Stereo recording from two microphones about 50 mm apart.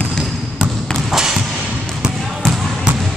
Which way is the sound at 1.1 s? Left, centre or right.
Centre.